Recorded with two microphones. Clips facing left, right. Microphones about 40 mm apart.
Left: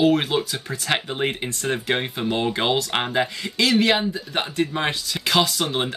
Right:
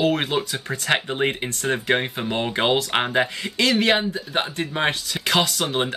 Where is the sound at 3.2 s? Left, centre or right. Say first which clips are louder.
Even; right.